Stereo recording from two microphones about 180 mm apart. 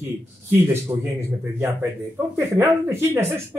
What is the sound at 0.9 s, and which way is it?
A man's voice, 20° right (ahead or behind).